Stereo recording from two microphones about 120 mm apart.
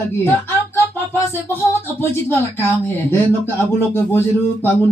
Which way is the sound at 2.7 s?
20° left (ahead or behind).